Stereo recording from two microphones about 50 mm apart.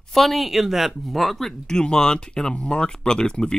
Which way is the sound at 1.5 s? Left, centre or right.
Centre.